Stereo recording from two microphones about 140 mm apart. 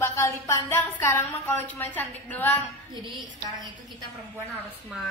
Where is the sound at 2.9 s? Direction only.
35° right (ahead or behind).